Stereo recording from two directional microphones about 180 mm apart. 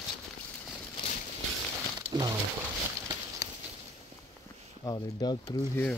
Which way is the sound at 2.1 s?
20° right (ahead or behind).